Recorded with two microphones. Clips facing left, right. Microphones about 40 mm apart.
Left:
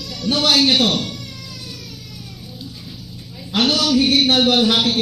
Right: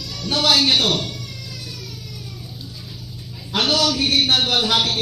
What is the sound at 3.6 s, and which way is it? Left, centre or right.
A man's voice, left.